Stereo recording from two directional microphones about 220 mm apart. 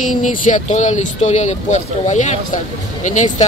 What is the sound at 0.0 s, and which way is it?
Speech, 35° left (ahead or behind).